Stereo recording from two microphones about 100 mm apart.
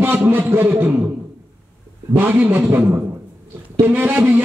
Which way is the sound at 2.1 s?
20° right (ahead or behind).